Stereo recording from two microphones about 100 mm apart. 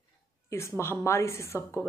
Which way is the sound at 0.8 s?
25° left (ahead or behind).